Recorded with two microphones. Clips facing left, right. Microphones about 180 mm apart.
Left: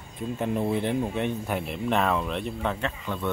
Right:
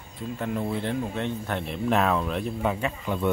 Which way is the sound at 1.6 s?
Centre (ahead or behind).